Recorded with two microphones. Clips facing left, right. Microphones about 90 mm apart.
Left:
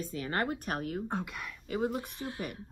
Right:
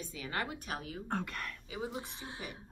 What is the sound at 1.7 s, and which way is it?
Speech, 55° left (ahead or behind).